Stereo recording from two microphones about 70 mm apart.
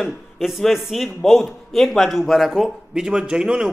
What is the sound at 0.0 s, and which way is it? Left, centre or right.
A man's voice, centre.